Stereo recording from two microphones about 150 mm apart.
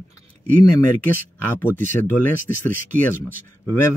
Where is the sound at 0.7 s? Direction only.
15° left (ahead or behind).